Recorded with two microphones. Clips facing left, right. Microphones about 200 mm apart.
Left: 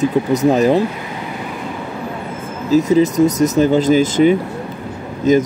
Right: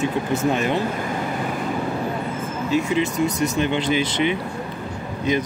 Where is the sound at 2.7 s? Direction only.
40° left (ahead or behind).